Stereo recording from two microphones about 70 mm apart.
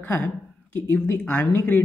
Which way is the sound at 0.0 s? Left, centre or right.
Left.